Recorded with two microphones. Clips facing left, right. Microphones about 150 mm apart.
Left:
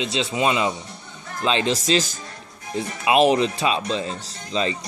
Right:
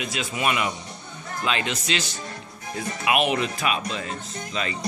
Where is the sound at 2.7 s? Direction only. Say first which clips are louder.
Left 5 dB; 30° left (ahead or behind).